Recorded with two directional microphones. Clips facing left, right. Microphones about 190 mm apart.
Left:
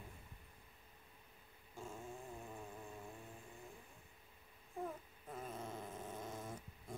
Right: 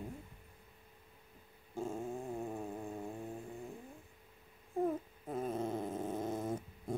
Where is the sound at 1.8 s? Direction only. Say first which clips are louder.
Right 11 dB; 45° right (ahead or behind).